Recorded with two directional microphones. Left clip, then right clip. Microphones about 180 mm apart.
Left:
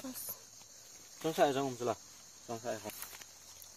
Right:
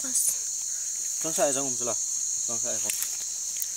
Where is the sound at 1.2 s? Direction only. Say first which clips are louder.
Right 4 dB; 35° right (ahead or behind).